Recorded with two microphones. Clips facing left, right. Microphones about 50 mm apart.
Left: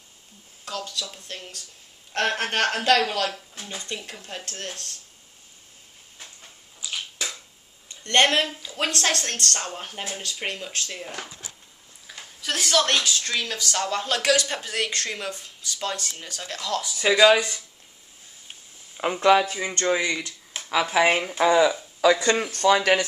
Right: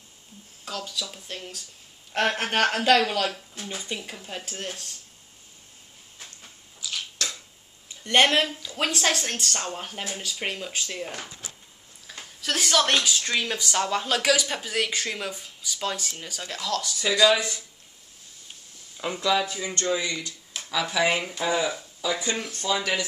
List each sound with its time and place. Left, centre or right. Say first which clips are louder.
0.7 s speech: left 1 dB; centre
6.8 s a sound: even; centre
7.9 s speech: even; centre
11.1 s speech: left 2 dB; centre
12.4 s speech: even; centre
13.7 s speech: right 1 dB; centre
17.0 s speech: left 4 dB; left
18.9 s speech: left 6 dB; left
21.3 s speech: left 7 dB; left
22.0 s speech: left 9 dB; left